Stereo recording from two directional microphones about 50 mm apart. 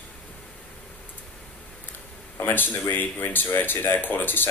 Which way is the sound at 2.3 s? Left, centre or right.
Left.